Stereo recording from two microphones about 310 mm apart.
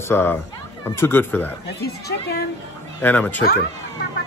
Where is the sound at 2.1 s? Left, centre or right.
Left.